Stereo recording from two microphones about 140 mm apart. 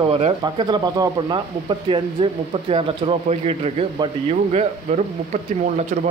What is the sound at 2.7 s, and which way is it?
Speech, 45° right (ahead or behind).